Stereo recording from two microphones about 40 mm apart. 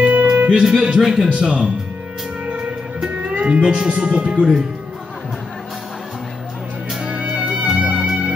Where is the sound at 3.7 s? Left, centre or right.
Right.